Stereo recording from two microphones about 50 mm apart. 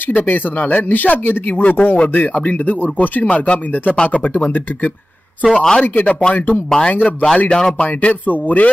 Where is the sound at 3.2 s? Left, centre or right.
Left.